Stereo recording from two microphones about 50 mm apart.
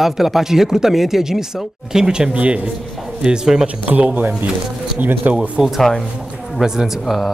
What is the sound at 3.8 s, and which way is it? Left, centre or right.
Speech, right.